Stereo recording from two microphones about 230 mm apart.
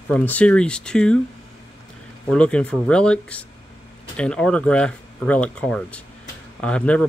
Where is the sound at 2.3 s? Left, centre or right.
Centre.